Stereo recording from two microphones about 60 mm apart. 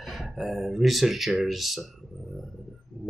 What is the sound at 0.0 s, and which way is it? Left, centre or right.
Speech, centre.